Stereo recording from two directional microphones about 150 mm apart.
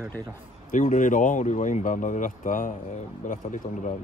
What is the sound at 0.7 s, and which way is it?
Speech, 60° left (ahead or behind).